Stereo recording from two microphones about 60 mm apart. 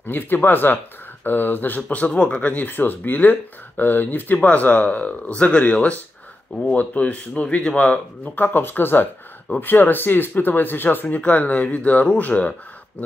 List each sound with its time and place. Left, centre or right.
0.0 s speech: left
1.8 s speech: left
8.4 s speech: left